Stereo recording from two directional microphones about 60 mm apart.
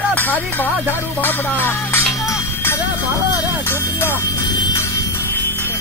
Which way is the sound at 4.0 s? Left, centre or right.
Left.